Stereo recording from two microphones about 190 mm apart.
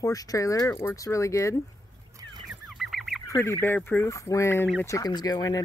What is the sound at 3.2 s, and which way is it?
Fowl, 15° left (ahead or behind).